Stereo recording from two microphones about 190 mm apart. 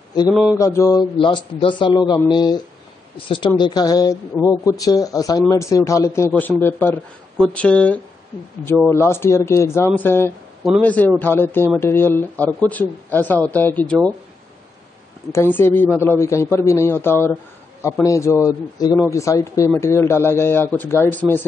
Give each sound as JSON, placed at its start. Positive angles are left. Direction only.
{"t": 0.3, "sound": "mantra", "side_deg": 0}
{"t": 0.6, "sound": "a woman's voice", "side_deg": 15}
{"t": 15.3, "sound": "speech", "side_deg": 10}